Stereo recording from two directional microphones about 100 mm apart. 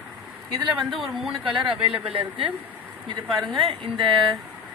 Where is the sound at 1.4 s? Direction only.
60° right (ahead or behind).